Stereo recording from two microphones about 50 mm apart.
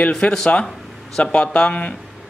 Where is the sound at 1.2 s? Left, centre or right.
Left.